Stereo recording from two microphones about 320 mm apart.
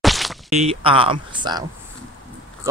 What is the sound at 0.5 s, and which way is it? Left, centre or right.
Speech, centre.